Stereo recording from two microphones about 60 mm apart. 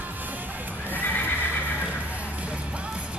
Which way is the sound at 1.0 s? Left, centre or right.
Left.